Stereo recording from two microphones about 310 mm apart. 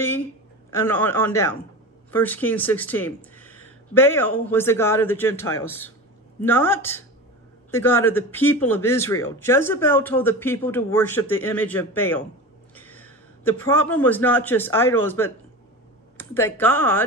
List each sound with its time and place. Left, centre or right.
0.7 s a man's voice: centre